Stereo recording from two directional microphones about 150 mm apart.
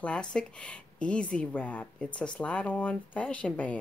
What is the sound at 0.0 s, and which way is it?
Speech, 5° left (ahead or behind).